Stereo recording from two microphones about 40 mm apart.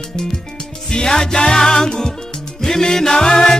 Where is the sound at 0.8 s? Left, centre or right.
Centre.